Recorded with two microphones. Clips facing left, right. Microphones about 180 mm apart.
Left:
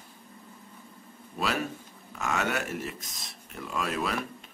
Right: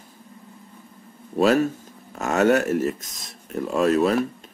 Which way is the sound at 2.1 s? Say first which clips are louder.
Right 11 dB; 45° right (ahead or behind).